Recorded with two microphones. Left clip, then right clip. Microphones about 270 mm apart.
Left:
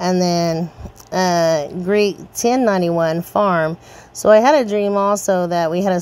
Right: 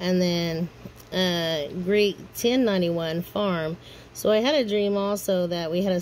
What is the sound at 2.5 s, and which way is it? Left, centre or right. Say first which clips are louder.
Speech: left 8 dB; centre.